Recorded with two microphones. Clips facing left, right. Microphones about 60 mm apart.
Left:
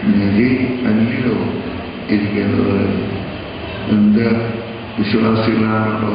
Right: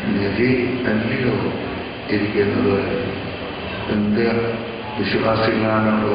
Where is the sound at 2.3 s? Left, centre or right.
Left.